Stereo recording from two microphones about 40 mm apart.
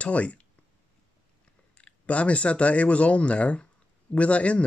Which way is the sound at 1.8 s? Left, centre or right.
Left.